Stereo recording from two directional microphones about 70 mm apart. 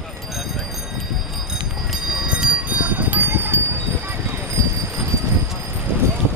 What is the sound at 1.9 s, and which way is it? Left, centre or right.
Bell, centre.